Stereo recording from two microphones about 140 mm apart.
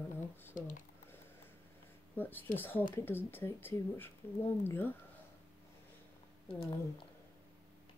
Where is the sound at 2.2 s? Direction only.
15° left (ahead or behind).